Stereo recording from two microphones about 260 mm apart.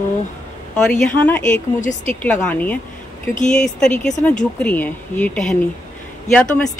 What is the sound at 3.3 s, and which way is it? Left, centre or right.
Speech, left.